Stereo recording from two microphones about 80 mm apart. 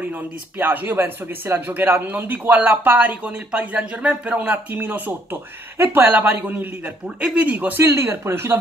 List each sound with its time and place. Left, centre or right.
0.6 s speech: right
7.8 s speech: right